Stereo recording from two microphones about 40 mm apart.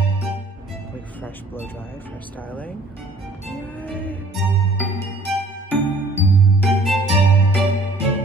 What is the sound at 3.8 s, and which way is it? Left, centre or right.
Music, left.